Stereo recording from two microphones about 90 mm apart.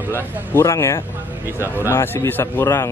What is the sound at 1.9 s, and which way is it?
Speech, 25° left (ahead or behind).